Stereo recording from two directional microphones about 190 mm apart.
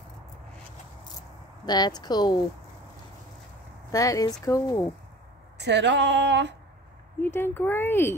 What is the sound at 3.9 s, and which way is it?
Speech, 20° left (ahead or behind).